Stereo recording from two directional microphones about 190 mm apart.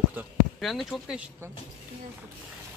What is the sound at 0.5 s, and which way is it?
Speech, centre (ahead or behind).